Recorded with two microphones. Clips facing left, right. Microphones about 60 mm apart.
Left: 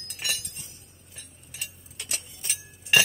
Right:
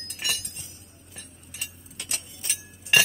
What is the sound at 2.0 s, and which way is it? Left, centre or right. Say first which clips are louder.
Glass: even; centre.